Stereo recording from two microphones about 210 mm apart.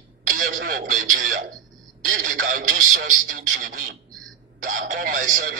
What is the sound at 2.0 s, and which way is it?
Speech, 50° right (ahead or behind).